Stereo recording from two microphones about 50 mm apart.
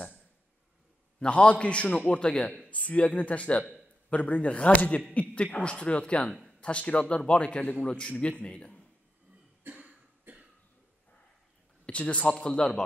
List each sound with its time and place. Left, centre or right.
1.2 s a man's voice: left
2.7 s a man's voice: left
9.6 s cough: right
11.8 s a man's voice: left